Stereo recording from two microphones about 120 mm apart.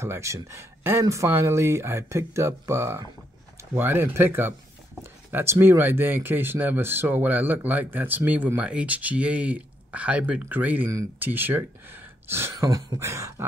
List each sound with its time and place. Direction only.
0.0 s speech: 25° right (ahead or behind)